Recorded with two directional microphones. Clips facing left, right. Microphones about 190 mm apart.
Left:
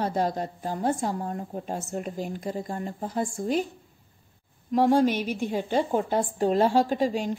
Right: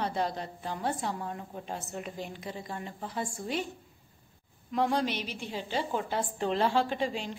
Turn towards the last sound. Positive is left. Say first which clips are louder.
# left 7 dB
turn(degrees=45)  # may be behind; listen again after turning